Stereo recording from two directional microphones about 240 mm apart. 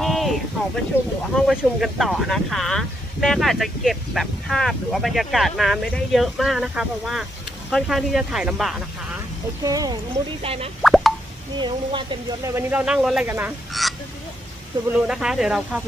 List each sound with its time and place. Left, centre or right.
0.0 s a sound: centre
0.9 s speech: centre
9.6 s speech: centre
10.8 s plop: centre
11.6 s speech: centre